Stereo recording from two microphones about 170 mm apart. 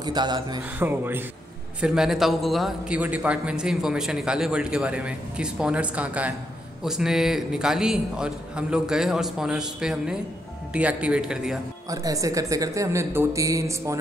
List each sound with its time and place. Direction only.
0.0 s speech: 25° right (ahead or behind)
0.7 s a man's voice: 10° right (ahead or behind)
11.9 s speech: 20° right (ahead or behind)